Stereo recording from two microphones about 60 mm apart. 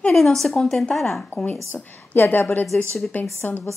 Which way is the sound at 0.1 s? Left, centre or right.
Centre.